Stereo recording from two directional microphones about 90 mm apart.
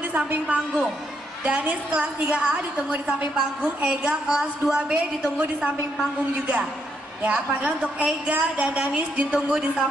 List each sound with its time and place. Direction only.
0.1 s a woman's voice: 15° right (ahead or behind)
7.2 s a woman's voice: 15° right (ahead or behind)